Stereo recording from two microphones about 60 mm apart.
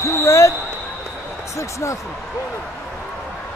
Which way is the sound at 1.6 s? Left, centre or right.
Left.